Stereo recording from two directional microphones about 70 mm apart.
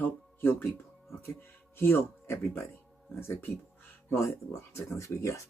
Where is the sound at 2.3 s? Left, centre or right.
Left.